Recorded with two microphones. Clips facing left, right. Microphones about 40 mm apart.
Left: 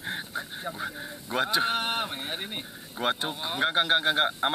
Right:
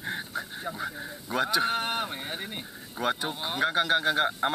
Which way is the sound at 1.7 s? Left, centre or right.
Left.